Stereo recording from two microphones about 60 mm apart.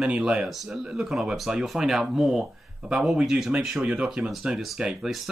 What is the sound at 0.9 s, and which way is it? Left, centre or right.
Speech, centre.